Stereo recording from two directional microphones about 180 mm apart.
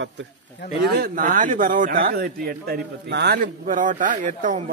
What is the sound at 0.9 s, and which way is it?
Speech, 55° right (ahead or behind).